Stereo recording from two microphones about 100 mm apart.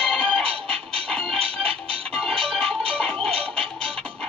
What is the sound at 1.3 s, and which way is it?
Music, 70° right (ahead or behind).